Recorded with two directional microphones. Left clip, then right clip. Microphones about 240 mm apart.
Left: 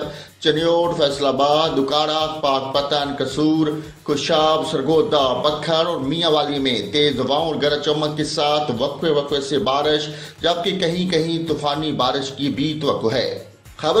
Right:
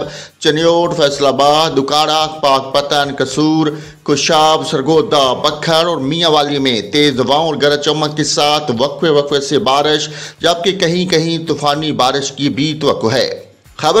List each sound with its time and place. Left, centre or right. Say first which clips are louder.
0.4 s a man's voice: right 6 dB; right